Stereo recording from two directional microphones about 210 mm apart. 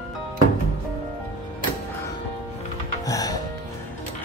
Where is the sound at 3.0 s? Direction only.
15° left (ahead or behind).